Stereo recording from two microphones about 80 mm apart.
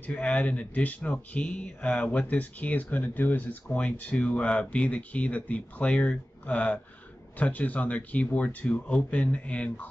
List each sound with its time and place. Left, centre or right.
0.0 s speech: centre